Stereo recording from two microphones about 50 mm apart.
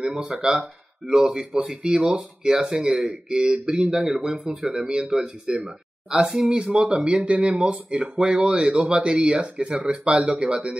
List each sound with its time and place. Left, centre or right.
0.0 s speech: centre